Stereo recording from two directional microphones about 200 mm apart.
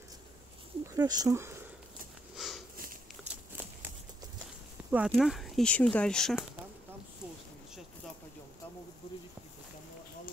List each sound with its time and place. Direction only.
0.9 s speech: 20° right (ahead or behind)
2.3 s sniff: centre (ahead or behind)
3.2 s a sound: centre (ahead or behind)
4.9 s speech: centre (ahead or behind)